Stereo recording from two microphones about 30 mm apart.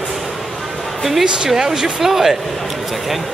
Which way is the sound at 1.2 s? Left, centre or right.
Right.